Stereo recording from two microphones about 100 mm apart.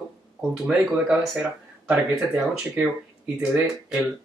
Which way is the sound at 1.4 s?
15° right (ahead or behind).